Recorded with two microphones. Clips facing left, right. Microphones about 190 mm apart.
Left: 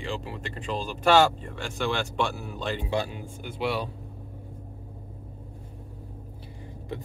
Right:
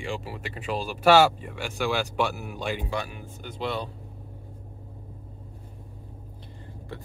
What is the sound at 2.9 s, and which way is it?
Speech, 30° left (ahead or behind).